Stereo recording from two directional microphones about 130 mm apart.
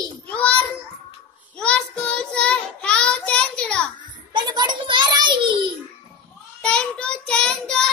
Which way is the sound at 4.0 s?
35° right (ahead or behind).